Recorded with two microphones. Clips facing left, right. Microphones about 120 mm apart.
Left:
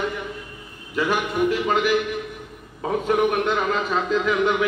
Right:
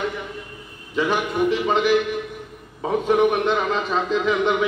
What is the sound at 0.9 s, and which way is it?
A man's voice, 5° left (ahead or behind).